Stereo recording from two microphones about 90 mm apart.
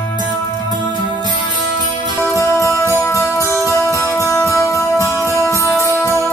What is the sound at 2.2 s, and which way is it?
Music, 35° left (ahead or behind).